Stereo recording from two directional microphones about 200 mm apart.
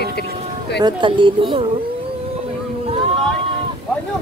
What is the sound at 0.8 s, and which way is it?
Speech, 25° right (ahead or behind).